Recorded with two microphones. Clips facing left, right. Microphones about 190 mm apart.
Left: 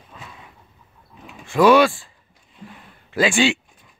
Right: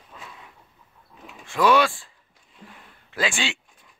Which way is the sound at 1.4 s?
10° left (ahead or behind).